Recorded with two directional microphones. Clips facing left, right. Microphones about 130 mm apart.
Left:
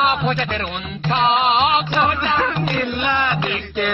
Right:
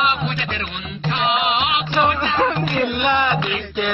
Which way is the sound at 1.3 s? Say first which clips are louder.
Left 3 dB; 35° left (ahead or behind).